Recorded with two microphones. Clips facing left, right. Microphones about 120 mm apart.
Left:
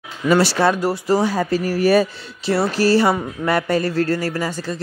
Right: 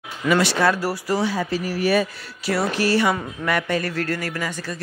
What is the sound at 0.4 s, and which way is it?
Speech, 30° left (ahead or behind).